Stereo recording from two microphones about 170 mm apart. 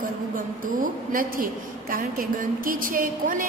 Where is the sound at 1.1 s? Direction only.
55° right (ahead or behind).